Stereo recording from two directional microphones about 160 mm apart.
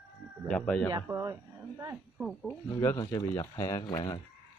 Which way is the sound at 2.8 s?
20° left (ahead or behind).